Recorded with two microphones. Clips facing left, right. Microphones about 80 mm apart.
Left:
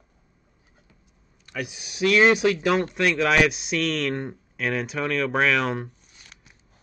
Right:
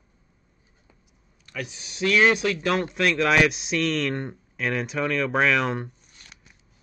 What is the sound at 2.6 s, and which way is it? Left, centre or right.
Speech, centre.